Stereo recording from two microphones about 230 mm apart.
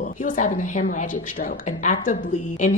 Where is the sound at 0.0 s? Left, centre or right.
Left.